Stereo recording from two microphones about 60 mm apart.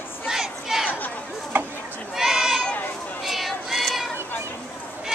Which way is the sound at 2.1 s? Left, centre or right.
Centre.